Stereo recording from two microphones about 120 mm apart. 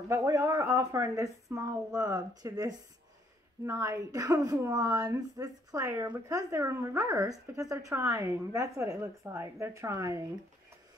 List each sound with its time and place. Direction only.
0.1 s a woman's voice: 25° right (ahead or behind)